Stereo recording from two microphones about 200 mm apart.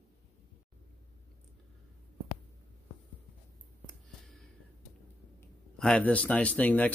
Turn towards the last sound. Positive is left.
turn(degrees=5)  # may be behind; listen again after turning